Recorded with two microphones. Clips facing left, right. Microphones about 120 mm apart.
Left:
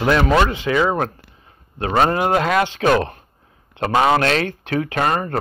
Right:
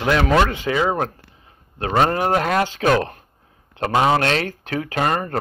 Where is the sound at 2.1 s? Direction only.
40° right (ahead or behind).